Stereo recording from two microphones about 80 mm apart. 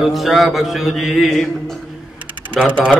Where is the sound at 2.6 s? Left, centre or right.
Centre.